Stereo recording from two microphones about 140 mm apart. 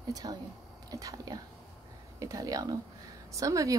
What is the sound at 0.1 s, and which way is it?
Speech, 30° right (ahead or behind).